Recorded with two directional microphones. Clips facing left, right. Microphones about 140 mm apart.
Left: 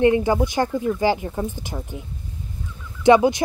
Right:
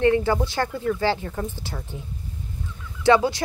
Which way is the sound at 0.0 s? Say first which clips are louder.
Left 2 dB; 15° left (ahead or behind).